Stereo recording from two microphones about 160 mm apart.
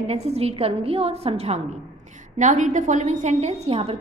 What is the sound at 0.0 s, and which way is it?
A woman's voice, 40° right (ahead or behind).